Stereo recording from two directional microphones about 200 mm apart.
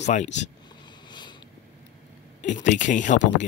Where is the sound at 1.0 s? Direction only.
20° left (ahead or behind).